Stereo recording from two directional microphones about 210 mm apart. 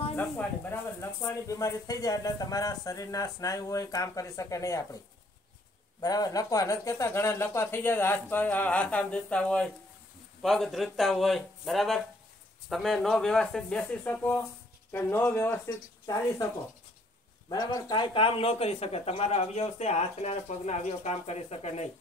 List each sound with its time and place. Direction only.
0.1 s speech: 10° left (ahead or behind)
5.9 s speech: 20° left (ahead or behind)
17.5 s speech: 20° left (ahead or behind)